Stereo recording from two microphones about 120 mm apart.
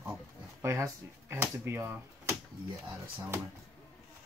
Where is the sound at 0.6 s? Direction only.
25° right (ahead or behind).